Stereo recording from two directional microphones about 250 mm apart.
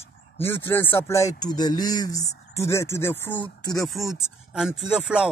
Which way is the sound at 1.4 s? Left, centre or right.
Centre.